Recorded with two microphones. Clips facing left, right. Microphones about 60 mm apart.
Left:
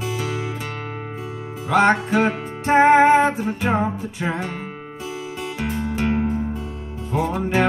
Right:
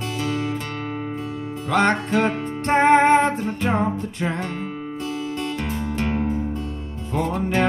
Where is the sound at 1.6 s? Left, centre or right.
Centre.